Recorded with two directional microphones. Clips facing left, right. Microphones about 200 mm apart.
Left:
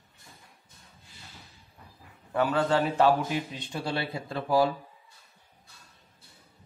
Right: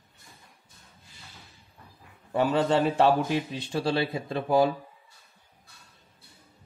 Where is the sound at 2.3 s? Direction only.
25° right (ahead or behind).